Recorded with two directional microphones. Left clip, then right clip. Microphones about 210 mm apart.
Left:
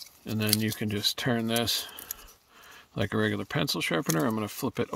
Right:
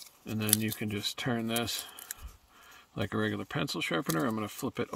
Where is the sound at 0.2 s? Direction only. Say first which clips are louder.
Left 4 dB; 30° left (ahead or behind).